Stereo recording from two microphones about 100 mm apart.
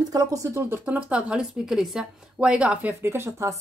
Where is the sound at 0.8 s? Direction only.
10° right (ahead or behind).